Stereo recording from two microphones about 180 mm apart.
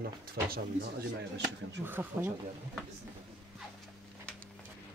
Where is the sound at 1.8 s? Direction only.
10° right (ahead or behind).